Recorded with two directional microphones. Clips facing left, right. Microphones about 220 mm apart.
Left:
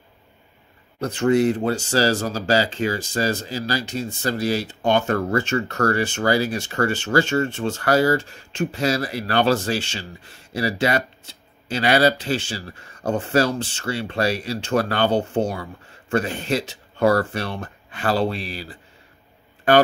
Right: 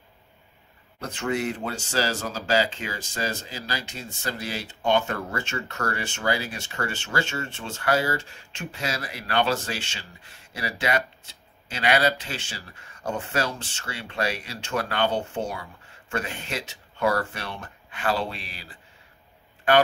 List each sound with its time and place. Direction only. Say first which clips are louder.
1.0 s speech: left 9 dB; 40° left (ahead or behind)